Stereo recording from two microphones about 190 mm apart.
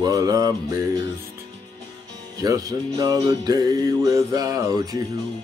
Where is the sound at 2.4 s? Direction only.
20° right (ahead or behind).